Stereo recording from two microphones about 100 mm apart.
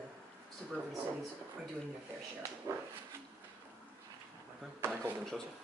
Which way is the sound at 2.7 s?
30° right (ahead or behind).